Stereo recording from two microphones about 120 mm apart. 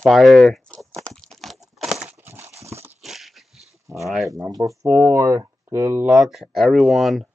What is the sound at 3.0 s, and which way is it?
Dog, centre (ahead or behind).